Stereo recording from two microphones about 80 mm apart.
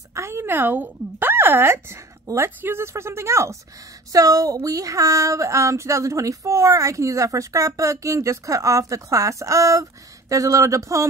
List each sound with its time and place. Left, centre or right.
0.1 s speech: right
4.1 s speech: right